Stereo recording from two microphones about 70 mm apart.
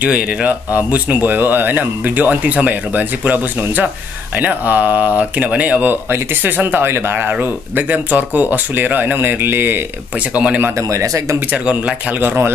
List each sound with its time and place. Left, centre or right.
0.0 s speech: right
10.3 s speech: centre
10.9 s speech: right
11.5 s speech: right